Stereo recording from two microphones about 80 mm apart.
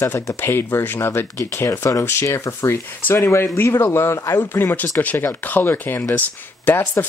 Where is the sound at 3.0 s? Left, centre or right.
Left.